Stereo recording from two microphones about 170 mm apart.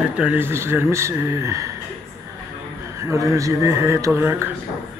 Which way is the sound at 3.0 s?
15° right (ahead or behind).